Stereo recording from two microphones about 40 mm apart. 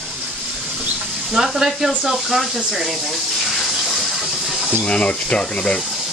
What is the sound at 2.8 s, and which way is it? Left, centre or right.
Bathtub, centre.